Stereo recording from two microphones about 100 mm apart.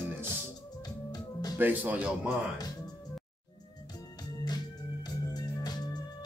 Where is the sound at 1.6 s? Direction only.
15° right (ahead or behind).